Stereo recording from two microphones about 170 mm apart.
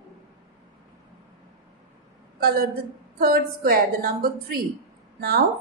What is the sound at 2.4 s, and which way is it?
A woman's voice, 65° right (ahead or behind).